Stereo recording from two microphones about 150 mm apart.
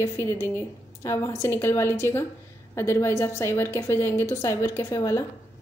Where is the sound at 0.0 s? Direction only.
15° left (ahead or behind).